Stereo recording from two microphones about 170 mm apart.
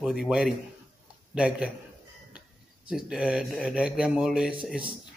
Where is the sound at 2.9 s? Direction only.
5° right (ahead or behind).